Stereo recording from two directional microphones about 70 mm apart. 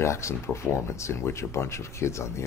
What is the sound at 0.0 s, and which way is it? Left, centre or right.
Speech, left.